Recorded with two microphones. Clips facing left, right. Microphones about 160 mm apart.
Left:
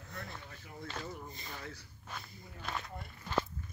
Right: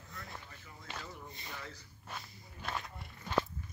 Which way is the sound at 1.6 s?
60° left (ahead or behind).